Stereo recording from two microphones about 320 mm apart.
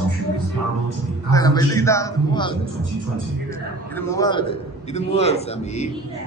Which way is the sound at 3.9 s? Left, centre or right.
Centre.